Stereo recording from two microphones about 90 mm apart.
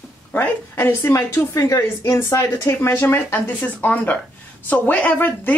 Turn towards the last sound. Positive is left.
turn(degrees=20)  # may be behind; listen again after turning